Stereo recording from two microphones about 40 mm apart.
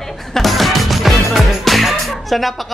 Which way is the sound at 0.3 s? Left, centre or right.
Centre.